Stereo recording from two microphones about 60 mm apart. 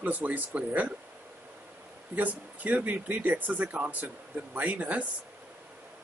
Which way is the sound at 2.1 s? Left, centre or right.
Right.